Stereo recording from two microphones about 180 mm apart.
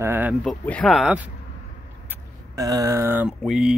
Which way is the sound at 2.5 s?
20° right (ahead or behind).